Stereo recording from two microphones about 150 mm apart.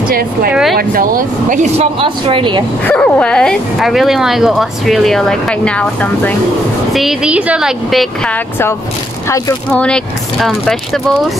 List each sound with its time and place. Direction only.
0.1 s speech: 80° right
0.5 s speech: 5° right (ahead or behind)
0.7 s speech: 70° right (ahead or behind)
1.8 s speech: 40° right (ahead or behind)
2.8 s speech: 10° left (ahead or behind)
9.7 s speech: 5° left (ahead or behind)